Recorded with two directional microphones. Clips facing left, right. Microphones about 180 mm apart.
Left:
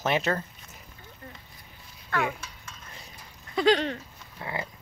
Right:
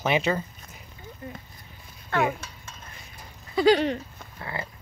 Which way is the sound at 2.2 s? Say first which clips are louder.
Right 6 dB; 45° right (ahead or behind).